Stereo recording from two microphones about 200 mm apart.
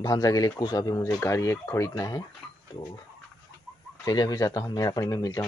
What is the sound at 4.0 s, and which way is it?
Speech, 20° left (ahead or behind).